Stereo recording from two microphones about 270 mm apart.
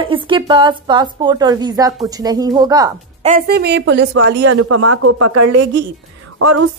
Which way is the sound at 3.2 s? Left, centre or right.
Right.